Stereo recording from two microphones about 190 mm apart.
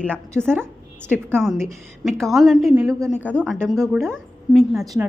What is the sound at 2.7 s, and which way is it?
Speech, 15° right (ahead or behind).